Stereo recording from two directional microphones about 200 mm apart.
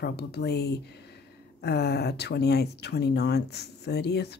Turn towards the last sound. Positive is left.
turn(degrees=55)  # may be behind; listen again after turning